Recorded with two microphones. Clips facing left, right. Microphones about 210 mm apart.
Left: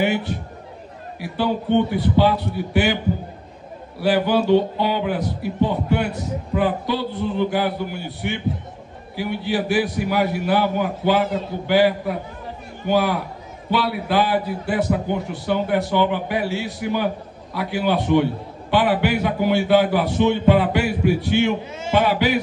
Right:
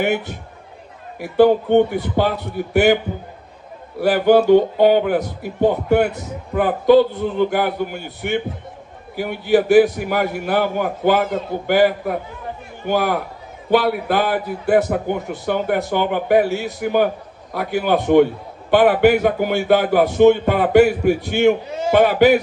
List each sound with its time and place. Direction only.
0.0 s a man's voice: 50° right (ahead or behind)
4.0 s a man's voice: 50° right (ahead or behind)
21.9 s a man's voice: 50° right (ahead or behind)